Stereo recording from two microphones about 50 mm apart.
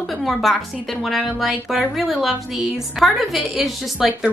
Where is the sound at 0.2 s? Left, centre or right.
Centre.